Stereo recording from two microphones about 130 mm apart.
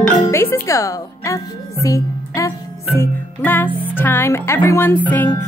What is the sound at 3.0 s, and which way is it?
Music, 15° left (ahead or behind).